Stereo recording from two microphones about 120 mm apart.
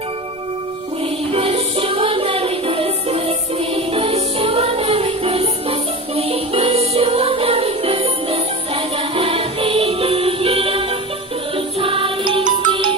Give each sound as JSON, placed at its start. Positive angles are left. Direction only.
{"t": 1.3, "sound": "music", "side_deg": -50}